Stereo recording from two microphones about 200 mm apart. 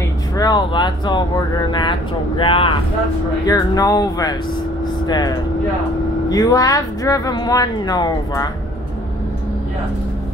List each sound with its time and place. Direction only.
0.4 s a woman's voice: 20° left (ahead or behind)